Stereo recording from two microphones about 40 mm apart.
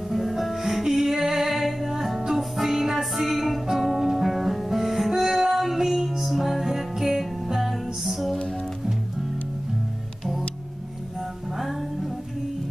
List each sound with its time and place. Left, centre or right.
0.1 s music: centre
11.1 s music: centre